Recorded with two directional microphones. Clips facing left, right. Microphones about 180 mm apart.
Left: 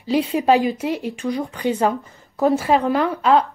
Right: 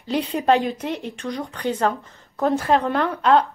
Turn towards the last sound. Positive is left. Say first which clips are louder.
# left 1 dB
turn(degrees=5)  # may be behind; listen again after turning